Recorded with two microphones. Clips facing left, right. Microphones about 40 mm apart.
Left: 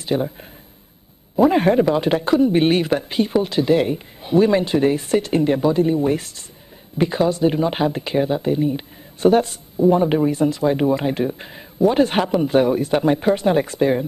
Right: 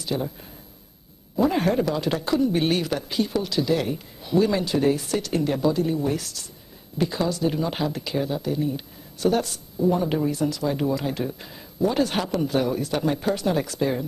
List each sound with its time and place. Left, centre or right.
0.0 s speech: left
1.3 s speech: left